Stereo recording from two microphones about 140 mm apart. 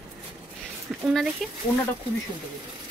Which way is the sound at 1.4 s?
Centre (ahead or behind).